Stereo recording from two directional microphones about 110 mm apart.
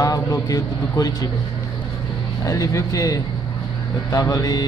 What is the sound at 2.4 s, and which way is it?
Speech, 30° left (ahead or behind).